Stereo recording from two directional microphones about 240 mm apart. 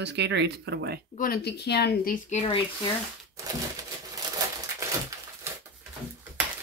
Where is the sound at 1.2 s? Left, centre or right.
Left.